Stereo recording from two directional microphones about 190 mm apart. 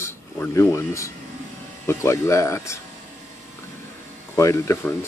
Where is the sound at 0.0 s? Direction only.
15° left (ahead or behind).